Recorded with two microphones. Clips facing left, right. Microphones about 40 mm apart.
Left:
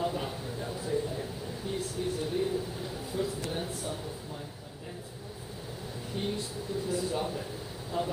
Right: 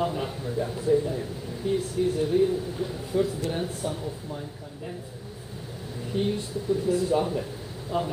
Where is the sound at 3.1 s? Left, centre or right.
Right.